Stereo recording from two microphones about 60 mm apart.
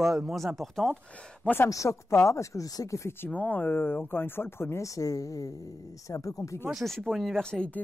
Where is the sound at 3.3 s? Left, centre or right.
Left.